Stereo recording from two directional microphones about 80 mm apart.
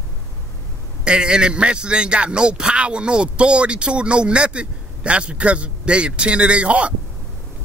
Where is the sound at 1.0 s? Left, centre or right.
Centre.